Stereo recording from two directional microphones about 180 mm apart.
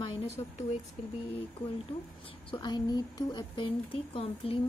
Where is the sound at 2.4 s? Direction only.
25° left (ahead or behind).